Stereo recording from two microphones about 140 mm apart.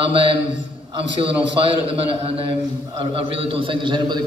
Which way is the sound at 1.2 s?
40° right (ahead or behind).